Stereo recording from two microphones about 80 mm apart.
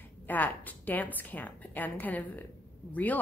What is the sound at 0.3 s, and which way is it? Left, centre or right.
A woman's voice, left.